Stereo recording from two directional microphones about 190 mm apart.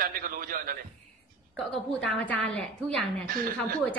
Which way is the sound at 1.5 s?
5° left (ahead or behind).